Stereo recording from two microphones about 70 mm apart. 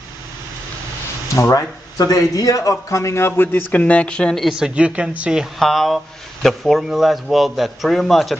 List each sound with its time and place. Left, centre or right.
1.3 s speech: left
3.8 s speech: centre
4.6 s speech: centre
5.6 s speech: centre